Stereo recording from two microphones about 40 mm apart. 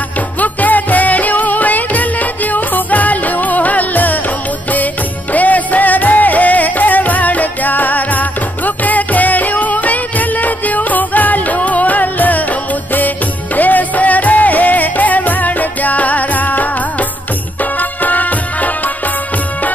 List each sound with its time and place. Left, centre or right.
0.4 s music: left
5.3 s music: left
13.6 s music: left
17.7 s music: left